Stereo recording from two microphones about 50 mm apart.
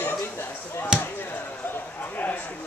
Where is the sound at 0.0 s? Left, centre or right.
Left.